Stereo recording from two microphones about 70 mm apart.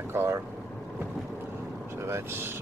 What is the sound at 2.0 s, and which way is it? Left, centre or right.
Speech, right.